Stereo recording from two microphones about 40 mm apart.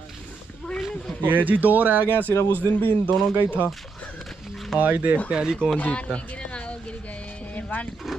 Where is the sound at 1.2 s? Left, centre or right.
Right.